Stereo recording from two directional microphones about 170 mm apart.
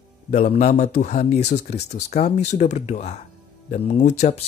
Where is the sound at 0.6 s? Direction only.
45° left (ahead or behind).